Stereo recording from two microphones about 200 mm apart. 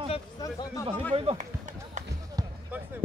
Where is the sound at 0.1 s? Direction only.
20° left (ahead or behind).